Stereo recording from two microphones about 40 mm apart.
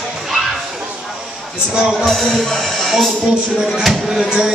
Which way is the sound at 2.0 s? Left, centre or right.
Centre.